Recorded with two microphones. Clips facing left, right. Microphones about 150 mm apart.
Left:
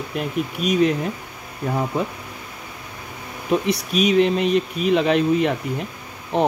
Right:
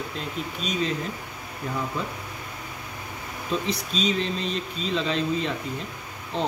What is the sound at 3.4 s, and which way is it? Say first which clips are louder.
Speech: left 7 dB; 65° left (ahead or behind).